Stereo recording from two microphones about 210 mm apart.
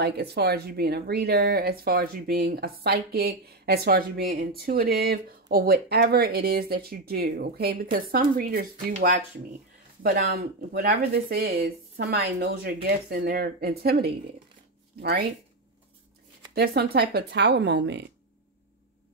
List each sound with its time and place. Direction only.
0.0 s speech: 50° right (ahead or behind)
10.0 s speech: 45° right (ahead or behind)
16.5 s speech: 50° right (ahead or behind)